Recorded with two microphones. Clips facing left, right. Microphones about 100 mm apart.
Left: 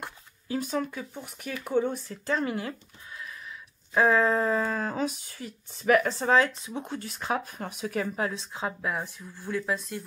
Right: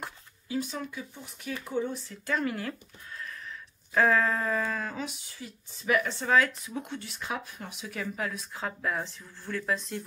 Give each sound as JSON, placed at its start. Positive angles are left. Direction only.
{"t": 0.5, "sound": "speech", "side_deg": 45}
{"t": 2.2, "sound": "a woman's voice", "side_deg": 25}
{"t": 3.9, "sound": "speech", "side_deg": 20}
{"t": 6.3, "sound": "a woman's voice", "side_deg": 25}
{"t": 7.0, "sound": "speech", "side_deg": 45}
{"t": 8.3, "sound": "speech", "side_deg": 25}
{"t": 9.7, "sound": "speech", "side_deg": 5}